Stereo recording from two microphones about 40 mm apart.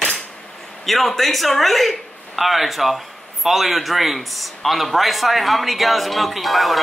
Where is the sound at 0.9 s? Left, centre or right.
Centre.